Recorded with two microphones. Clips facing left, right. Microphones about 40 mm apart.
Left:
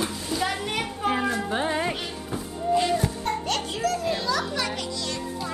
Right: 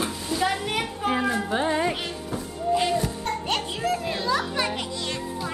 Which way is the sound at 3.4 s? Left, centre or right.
Centre.